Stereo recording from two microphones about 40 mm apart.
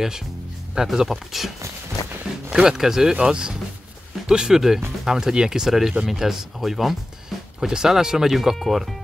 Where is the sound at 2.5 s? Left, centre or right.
Centre.